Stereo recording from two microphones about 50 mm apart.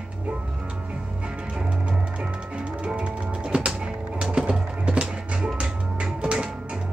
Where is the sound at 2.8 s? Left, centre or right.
Centre.